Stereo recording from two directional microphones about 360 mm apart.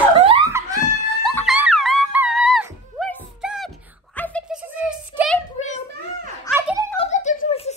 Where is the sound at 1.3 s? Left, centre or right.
Centre.